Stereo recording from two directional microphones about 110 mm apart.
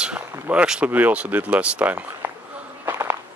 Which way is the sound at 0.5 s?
10° right (ahead or behind).